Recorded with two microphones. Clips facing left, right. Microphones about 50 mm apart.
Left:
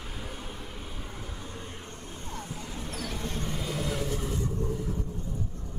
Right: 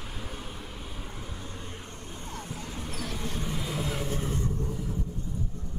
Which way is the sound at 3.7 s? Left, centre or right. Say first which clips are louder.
Left 1 dB; centre.